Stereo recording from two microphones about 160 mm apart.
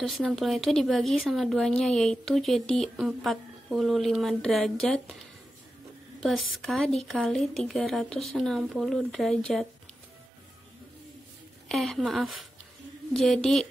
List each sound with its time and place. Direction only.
0.0 s speech: centre (ahead or behind)
6.2 s speech: centre (ahead or behind)
11.7 s speech: centre (ahead or behind)